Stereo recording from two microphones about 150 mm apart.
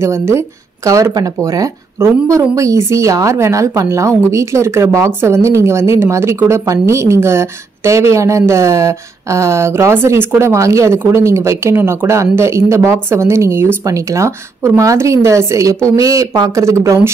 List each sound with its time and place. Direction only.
0.0 s speech: 15° right (ahead or behind)